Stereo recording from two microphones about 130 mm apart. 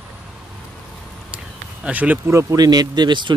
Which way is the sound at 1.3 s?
10° right (ahead or behind).